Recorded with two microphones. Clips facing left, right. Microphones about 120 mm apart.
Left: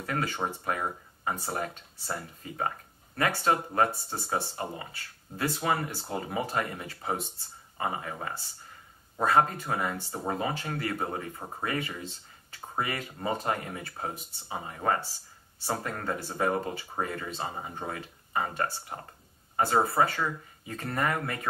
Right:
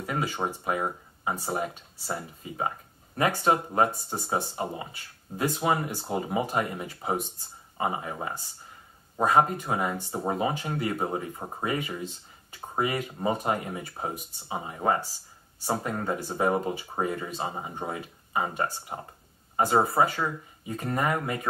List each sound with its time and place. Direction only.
0.0 s speech: 10° right (ahead or behind)